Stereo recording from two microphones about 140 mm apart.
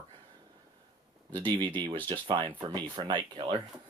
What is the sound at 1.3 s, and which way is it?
Speech, 35° right (ahead or behind).